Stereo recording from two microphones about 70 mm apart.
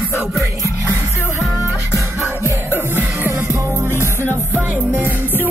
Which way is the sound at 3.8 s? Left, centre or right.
Left.